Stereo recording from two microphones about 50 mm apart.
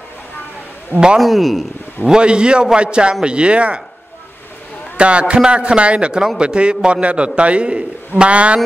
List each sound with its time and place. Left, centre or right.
1.2 s a man's voice: centre
2.0 s a man's voice: centre
4.9 s a man's voice: right